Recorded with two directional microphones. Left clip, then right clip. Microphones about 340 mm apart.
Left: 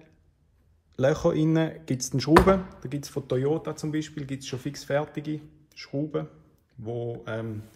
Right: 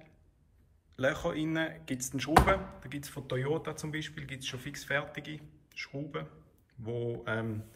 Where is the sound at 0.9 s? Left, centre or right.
Centre.